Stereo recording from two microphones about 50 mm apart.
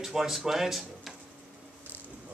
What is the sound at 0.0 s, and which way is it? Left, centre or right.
Speech, centre.